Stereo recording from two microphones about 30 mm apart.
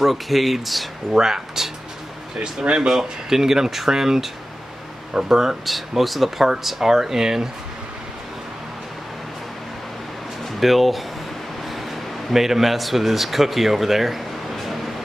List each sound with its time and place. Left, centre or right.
0.0 s speech: centre
1.1 s speech: centre
2.7 s speech: right
3.0 s speech: centre
5.7 s speech: centre
10.4 s speech: centre